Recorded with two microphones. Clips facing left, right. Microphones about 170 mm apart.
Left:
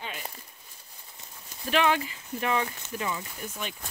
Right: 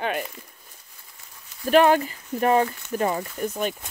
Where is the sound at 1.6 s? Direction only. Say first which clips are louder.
Right 8 dB; 45° right (ahead or behind).